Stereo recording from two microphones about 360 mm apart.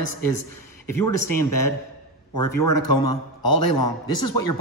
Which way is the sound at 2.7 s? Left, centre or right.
Left.